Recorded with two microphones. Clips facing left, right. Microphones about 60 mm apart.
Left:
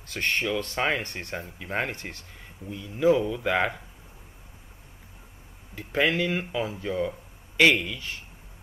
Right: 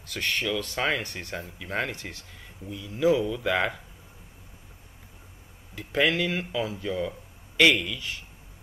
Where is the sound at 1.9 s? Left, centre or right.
Left.